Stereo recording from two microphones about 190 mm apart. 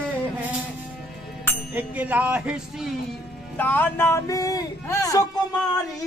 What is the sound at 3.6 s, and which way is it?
Speech, 10° left (ahead or behind).